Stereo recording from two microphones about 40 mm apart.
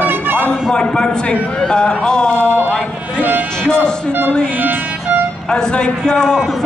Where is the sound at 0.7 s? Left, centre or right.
Left.